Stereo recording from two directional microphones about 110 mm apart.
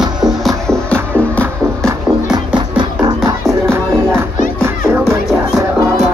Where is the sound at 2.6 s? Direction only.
45° right (ahead or behind).